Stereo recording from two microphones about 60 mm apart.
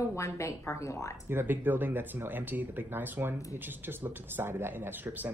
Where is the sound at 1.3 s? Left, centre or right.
Right.